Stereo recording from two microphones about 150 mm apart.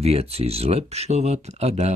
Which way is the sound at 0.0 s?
40° right (ahead or behind).